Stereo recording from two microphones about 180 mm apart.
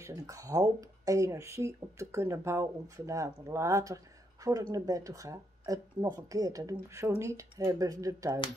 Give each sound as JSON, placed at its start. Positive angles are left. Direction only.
{"t": 0.0, "sound": "speech", "side_deg": -15}